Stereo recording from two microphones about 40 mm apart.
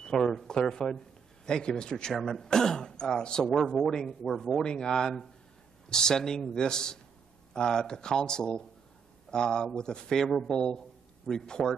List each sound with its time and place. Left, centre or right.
0.0 s cash register: centre
0.3 s a man's voice: centre